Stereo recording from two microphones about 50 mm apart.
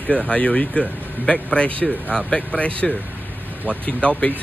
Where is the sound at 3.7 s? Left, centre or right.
Left.